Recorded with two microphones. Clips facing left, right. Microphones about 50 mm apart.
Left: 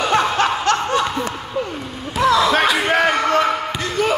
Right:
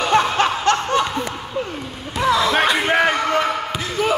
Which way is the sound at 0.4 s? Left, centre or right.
Right.